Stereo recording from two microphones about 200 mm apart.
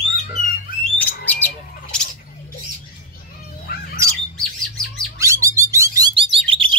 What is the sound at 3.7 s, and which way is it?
Bird, 50° left (ahead or behind).